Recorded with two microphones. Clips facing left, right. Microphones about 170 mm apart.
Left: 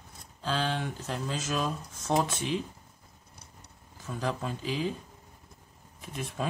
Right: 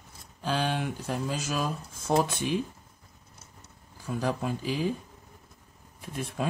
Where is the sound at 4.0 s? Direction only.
10° right (ahead or behind).